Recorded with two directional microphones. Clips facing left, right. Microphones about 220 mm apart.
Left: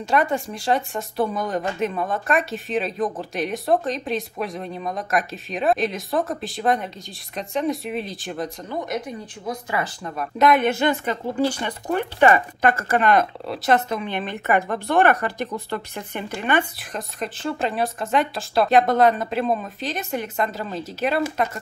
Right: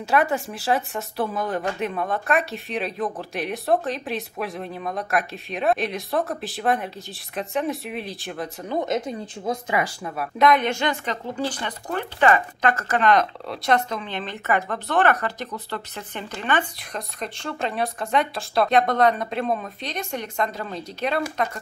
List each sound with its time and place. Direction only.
0.0 s speech: 5° right (ahead or behind)
8.6 s speech: 25° right (ahead or behind)
10.4 s speech: 5° left (ahead or behind)